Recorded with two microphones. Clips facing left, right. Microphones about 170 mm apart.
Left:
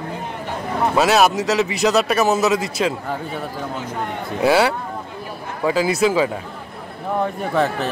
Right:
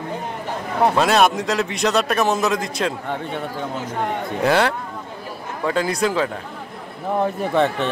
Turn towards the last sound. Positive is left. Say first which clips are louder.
# right 1 dB
turn(degrees=0)  # may be behind; listen again after turning